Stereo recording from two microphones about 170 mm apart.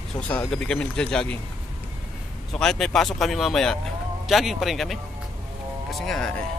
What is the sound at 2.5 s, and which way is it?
Speech, 5° left (ahead or behind).